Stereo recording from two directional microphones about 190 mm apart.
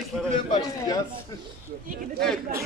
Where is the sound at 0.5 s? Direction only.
20° left (ahead or behind).